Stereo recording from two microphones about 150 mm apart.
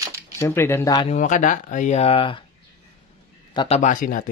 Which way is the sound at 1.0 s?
55° left (ahead or behind).